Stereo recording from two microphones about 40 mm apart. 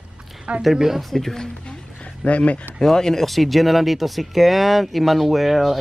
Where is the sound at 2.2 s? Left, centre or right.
Left.